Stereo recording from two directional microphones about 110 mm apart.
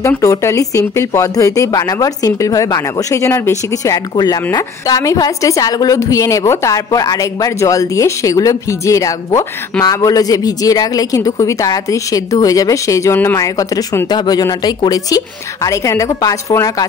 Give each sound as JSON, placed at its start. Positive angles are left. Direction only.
{"t": 0.2, "sound": "speech", "side_deg": 25}
{"t": 14.0, "sound": "speech", "side_deg": 40}